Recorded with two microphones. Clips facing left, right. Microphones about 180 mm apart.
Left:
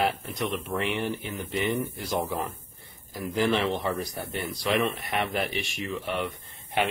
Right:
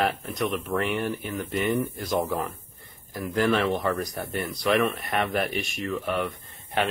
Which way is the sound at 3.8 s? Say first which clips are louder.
Right 3 dB; 10° left (ahead or behind).